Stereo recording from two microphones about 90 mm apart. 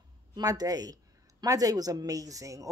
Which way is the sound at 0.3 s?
45° right (ahead or behind).